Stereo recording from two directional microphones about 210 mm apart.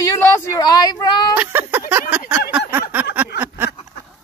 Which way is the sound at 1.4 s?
10° right (ahead or behind).